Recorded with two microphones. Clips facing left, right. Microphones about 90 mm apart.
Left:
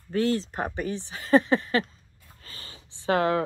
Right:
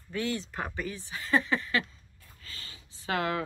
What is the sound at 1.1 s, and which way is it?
Speech, 40° left (ahead or behind).